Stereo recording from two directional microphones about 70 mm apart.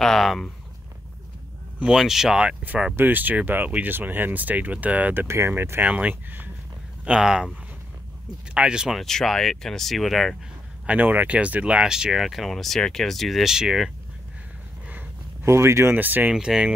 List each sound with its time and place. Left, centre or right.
0.0 s speech: centre
1.8 s speech: centre
2.4 s speech: centre
5.2 s speech: right
5.9 s speech: right
7.1 s speech: centre
8.5 s speech: centre
8.9 s speech: centre
10.9 s speech: right; by 13.9 s centre
15.4 s speech: right
15.9 s speech: right
16.3 s speech: centre